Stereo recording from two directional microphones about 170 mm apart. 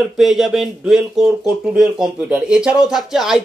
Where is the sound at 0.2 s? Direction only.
Centre (ahead or behind).